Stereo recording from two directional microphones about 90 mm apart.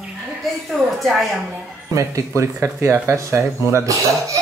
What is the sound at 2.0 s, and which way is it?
Speech, 35° right (ahead or behind).